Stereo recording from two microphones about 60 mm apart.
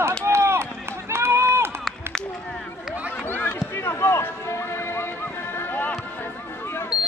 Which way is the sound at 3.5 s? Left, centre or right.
Left.